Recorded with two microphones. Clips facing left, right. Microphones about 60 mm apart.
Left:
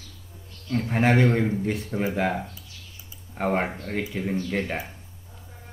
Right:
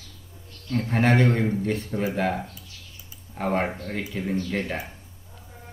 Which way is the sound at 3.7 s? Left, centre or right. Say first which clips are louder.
Left 1 dB; centre.